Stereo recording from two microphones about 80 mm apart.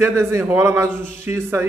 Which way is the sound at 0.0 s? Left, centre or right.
Right.